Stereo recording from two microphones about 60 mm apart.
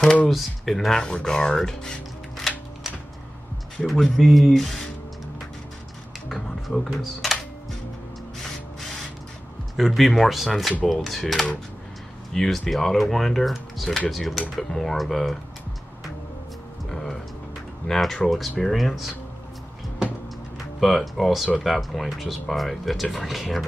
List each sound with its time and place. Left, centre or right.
0.3 s speech: centre
6.3 s speech: centre
9.8 s speech: centre
16.9 s a sound: centre
17.8 s speech: centre
20.8 s speech: centre